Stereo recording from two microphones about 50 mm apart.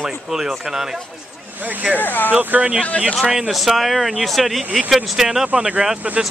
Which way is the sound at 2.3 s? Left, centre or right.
Right.